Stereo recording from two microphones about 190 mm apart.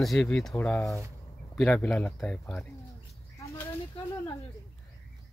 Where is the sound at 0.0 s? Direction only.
Centre (ahead or behind).